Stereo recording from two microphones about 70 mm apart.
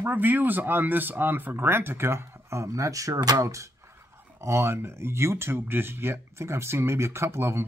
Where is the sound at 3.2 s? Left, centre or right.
Right.